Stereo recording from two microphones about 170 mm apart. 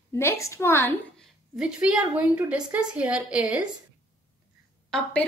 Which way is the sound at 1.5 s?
5° right (ahead or behind).